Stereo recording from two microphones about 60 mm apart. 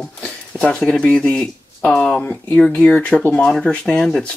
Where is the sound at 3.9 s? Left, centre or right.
Centre.